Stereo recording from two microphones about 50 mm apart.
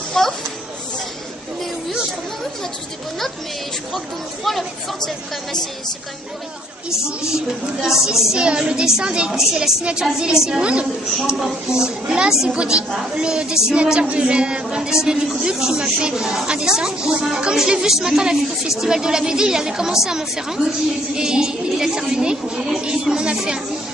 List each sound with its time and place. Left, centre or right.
0.2 s children playing: centre
4.5 s speech: centre
7.3 s a woman's voice: centre